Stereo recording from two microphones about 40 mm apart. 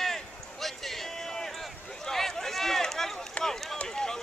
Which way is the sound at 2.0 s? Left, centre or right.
Centre.